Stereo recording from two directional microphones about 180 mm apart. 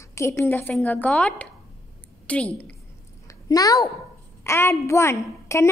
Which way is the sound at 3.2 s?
20° left (ahead or behind).